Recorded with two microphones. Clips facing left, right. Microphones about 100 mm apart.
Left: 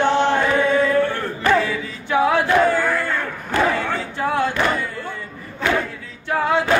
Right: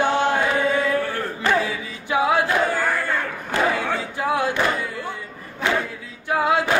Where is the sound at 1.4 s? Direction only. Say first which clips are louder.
Left 4 dB; 15° right (ahead or behind).